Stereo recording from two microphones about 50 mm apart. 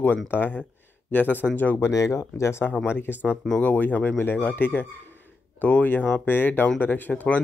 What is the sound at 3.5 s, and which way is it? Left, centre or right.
A man's voice, left.